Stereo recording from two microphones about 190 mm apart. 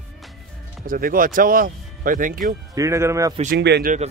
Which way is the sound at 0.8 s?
50° right (ahead or behind).